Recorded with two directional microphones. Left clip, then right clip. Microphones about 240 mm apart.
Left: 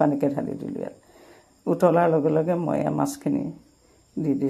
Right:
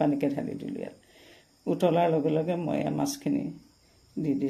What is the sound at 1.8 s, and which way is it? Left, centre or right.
Speech, centre.